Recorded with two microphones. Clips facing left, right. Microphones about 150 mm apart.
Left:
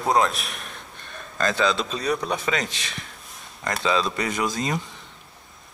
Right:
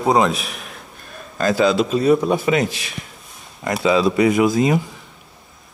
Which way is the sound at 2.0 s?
25° right (ahead or behind).